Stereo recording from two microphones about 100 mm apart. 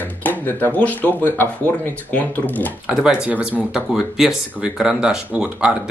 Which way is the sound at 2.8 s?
10° right (ahead or behind).